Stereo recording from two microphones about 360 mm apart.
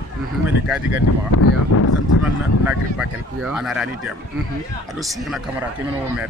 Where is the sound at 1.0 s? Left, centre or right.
Left.